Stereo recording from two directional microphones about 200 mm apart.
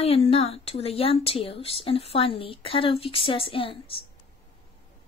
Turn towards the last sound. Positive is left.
turn(degrees=25)  # may be behind; listen again after turning